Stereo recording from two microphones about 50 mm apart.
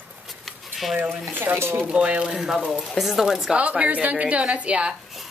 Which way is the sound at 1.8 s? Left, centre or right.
Right.